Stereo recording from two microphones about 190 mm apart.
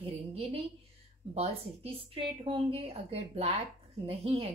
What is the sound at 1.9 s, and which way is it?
Speech, 30° right (ahead or behind).